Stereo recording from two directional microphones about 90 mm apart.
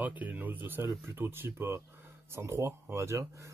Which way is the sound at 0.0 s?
20° right (ahead or behind).